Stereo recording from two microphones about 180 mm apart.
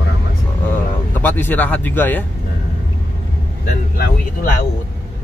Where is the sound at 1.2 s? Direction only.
10° left (ahead or behind).